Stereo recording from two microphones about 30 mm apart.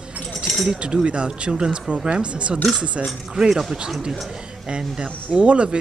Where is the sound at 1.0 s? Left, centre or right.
Right.